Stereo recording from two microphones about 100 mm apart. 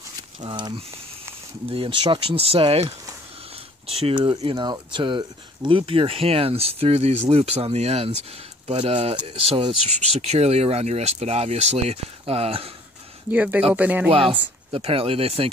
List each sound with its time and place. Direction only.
0.4 s speech: 50° right (ahead or behind); by 4.1 s 80° right
4.1 s speech: 55° right (ahead or behind); by 8.1 s 90° right
8.6 s speech: 80° right
13.3 s speech: 15° right (ahead or behind)
14.7 s speech: 70° right (ahead or behind)